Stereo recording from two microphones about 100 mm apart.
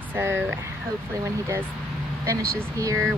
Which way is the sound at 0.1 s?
20° right (ahead or behind).